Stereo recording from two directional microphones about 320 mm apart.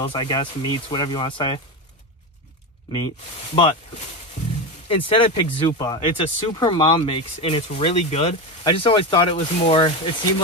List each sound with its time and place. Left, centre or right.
0.0 s speech: centre
3.5 s speech: centre
4.8 s speech: centre